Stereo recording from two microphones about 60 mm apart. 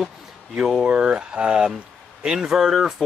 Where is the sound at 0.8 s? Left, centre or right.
Centre.